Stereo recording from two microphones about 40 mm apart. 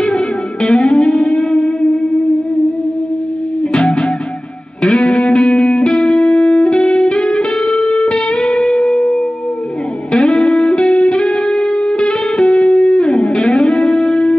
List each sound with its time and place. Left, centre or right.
0.6 s music: left
3.7 s music: left